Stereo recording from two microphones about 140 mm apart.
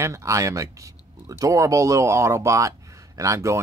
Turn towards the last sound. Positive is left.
turn(degrees=-20)  # may be behind; listen again after turning